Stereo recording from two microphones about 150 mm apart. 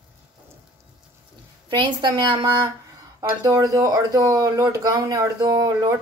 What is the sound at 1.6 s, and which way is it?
Speech, 30° right (ahead or behind).